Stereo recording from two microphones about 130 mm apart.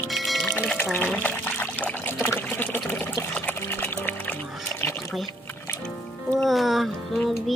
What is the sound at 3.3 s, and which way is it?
Music, 15° left (ahead or behind).